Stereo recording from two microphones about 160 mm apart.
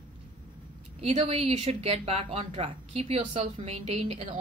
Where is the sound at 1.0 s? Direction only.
40° right (ahead or behind).